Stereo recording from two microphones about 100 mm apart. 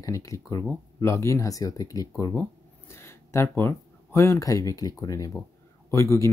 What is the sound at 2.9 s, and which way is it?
Speech, 25° left (ahead or behind).